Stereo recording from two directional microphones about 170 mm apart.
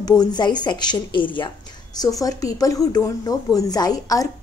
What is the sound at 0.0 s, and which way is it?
Speech, 25° left (ahead or behind).